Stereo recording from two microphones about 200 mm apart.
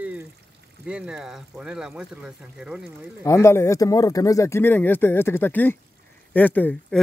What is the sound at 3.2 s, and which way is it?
Speech, 15° left (ahead or behind).